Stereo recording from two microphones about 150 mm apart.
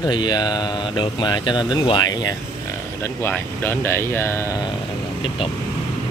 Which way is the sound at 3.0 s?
15° left (ahead or behind).